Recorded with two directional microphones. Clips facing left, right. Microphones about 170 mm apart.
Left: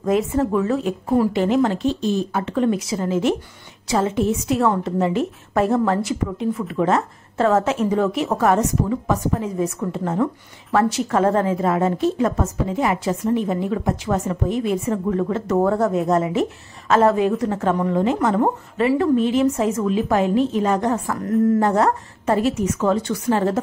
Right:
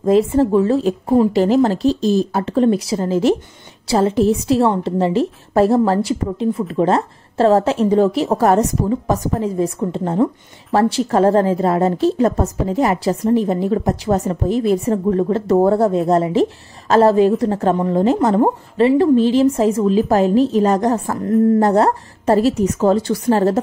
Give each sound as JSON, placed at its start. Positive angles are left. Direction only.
{"t": 0.0, "sound": "a woman's voice", "side_deg": -30}